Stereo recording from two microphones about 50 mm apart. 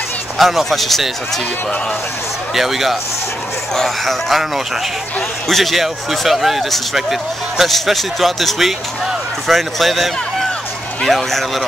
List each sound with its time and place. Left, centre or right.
0.4 s speech: centre
2.5 s speech: centre
5.5 s speech: centre